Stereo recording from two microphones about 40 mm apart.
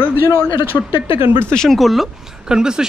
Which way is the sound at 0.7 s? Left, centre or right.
Left.